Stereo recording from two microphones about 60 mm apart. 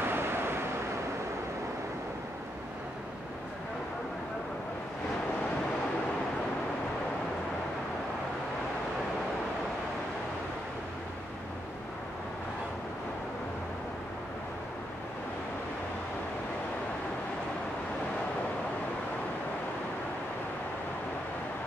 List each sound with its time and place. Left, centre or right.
0.0 s waves: right